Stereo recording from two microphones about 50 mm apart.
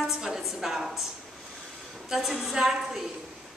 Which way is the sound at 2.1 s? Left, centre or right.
Centre.